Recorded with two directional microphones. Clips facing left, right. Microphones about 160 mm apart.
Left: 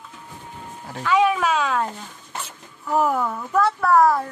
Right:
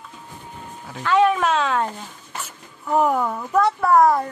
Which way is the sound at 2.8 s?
15° right (ahead or behind).